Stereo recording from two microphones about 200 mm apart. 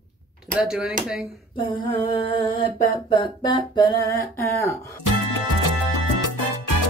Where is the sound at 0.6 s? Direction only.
5° right (ahead or behind).